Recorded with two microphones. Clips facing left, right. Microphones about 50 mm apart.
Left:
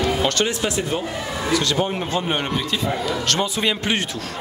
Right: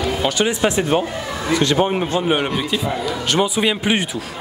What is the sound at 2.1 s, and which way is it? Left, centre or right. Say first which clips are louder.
A man's voice: right 3 dB; centre.